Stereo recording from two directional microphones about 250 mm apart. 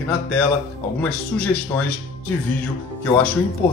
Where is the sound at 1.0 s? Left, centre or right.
Centre.